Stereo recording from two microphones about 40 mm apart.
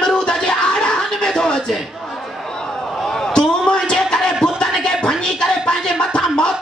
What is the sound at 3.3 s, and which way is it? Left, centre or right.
Music, left.